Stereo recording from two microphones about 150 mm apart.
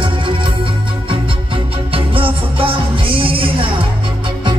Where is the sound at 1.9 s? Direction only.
35° right (ahead or behind).